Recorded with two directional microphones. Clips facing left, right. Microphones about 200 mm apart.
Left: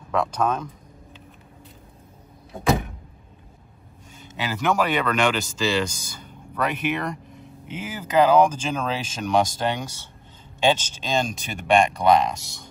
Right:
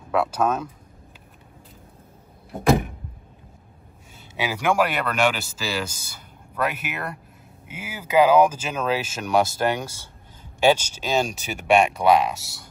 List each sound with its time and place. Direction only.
0.1 s speech: 5° right (ahead or behind)
4.3 s speech: 10° right (ahead or behind)